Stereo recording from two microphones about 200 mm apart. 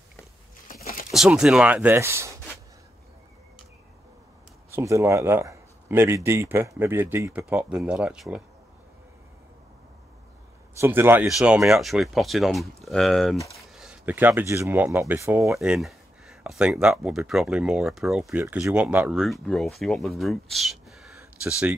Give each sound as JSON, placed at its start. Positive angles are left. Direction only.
{"t": 0.7, "sound": "a sound", "side_deg": 45}
{"t": 1.1, "sound": "speech", "side_deg": -5}
{"t": 4.6, "sound": "speech", "side_deg": -15}
{"t": 10.8, "sound": "speech", "side_deg": -10}
{"t": 15.5, "sound": "speech", "side_deg": -5}